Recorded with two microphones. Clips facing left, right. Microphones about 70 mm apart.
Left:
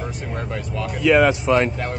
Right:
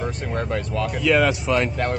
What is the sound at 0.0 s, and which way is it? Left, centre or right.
Speech, centre.